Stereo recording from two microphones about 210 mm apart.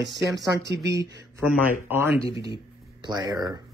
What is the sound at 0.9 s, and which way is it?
A man's voice, 15° right (ahead or behind).